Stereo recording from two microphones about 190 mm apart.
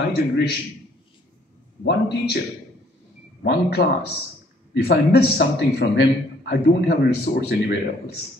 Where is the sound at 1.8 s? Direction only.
60° left (ahead or behind).